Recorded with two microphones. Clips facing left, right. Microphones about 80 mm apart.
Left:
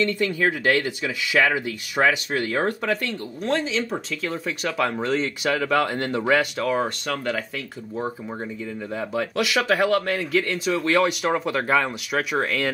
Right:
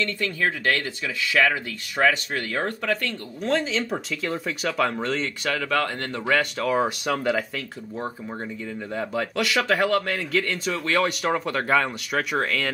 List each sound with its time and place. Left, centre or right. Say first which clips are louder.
0.0 s speech: left 4 dB; centre
3.4 s speech: even; centre
6.6 s speech: right 1 dB; centre
8.9 s speech: left 1 dB; centre